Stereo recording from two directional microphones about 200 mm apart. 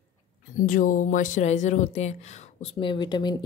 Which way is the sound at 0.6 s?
45° left (ahead or behind).